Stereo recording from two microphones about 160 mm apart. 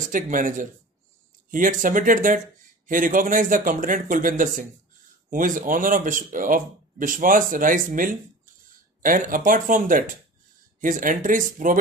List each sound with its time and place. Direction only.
0.1 s speech: 55° right (ahead or behind)